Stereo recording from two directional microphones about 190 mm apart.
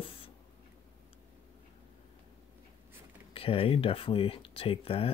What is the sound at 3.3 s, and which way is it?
Speech, 30° left (ahead or behind).